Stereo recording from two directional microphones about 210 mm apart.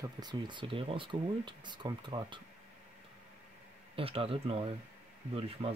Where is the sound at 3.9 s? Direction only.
25° right (ahead or behind).